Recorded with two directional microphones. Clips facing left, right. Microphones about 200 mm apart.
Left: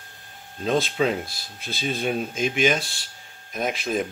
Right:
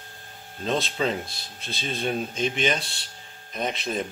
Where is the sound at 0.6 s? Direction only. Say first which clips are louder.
Left 4 dB; 5° left (ahead or behind).